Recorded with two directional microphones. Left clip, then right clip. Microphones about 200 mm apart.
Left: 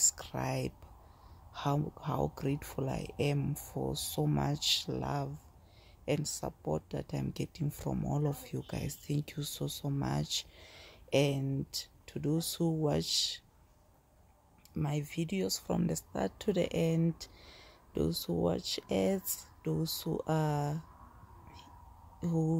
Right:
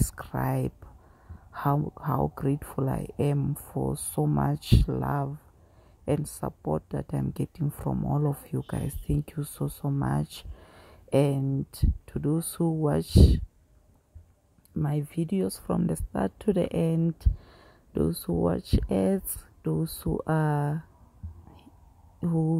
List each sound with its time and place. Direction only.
0.2 s speech: 20° right (ahead or behind)
14.8 s speech: 20° right (ahead or behind)